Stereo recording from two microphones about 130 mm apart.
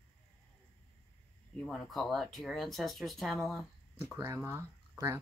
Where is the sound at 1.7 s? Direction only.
Centre (ahead or behind).